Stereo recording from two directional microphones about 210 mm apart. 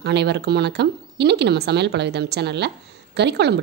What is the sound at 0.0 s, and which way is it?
Speech, 55° right (ahead or behind).